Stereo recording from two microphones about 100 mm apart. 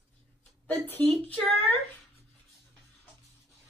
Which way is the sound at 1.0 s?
10° left (ahead or behind).